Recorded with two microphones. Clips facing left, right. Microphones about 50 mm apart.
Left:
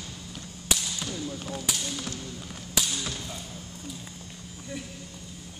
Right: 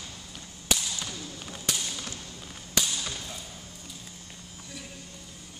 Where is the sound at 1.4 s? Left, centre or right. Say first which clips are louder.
Left 2 dB; centre.